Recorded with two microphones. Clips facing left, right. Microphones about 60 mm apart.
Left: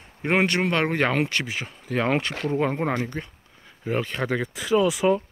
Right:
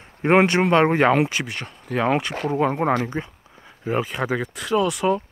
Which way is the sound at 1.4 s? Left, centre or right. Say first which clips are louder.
Even; centre.